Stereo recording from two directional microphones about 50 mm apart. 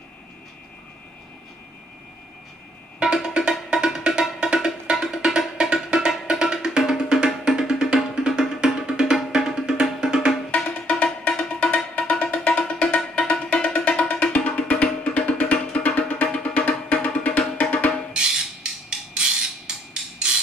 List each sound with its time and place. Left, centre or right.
3.0 s music: centre
10.5 s music: left
18.1 s a sound: centre